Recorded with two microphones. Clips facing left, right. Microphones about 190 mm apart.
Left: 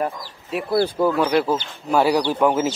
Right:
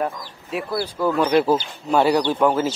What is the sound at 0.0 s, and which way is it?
A man's voice, centre (ahead or behind).